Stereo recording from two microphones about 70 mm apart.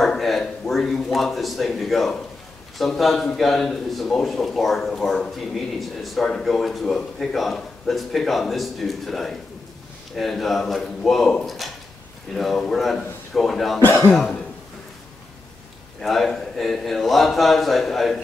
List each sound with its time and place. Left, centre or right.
0.0 s speech: centre
13.7 s speech: left
14.1 s cough: centre
16.0 s speech: centre